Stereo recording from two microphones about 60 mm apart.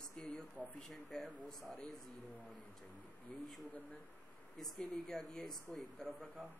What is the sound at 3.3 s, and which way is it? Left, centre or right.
Speech, centre.